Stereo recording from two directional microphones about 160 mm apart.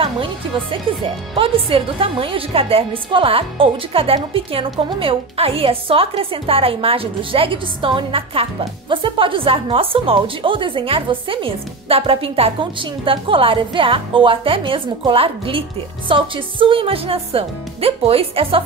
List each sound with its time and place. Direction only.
0.0 s a woman's voice: 35° right (ahead or behind)